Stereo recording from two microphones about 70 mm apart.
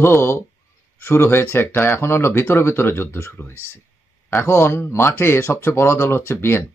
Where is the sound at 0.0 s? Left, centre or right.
Left.